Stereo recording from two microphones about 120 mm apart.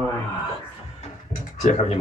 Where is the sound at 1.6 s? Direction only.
90° left.